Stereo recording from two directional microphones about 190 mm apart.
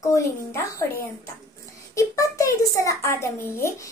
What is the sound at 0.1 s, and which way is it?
A woman's voice, 15° left (ahead or behind).